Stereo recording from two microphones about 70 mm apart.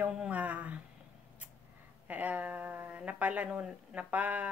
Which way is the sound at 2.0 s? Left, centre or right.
Right.